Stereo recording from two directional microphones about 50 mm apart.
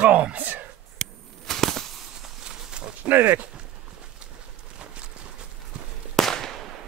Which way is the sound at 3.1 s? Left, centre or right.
Right.